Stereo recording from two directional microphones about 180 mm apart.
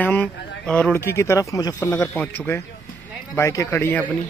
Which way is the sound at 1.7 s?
10° left (ahead or behind).